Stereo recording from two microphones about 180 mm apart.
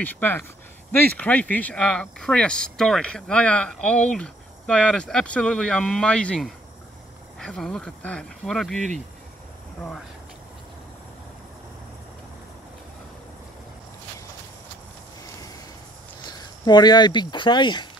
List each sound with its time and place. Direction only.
0.0 s speech: 10° left (ahead or behind)
16.3 s speech: 20° left (ahead or behind)